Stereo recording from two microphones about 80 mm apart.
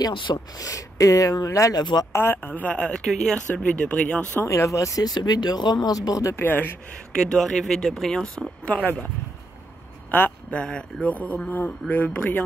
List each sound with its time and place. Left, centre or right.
0.6 s speech: left
1.8 s speech: left
2.1 s speech: left
4.5 s speech: left
6.3 s speech: left
7.2 s speech: centre
8.6 s speech: centre
10.1 s speech: left